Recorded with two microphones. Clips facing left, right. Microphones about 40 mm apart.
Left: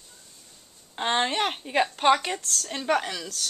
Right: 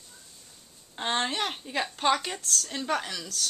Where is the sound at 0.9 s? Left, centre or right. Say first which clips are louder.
Left 4 dB; left.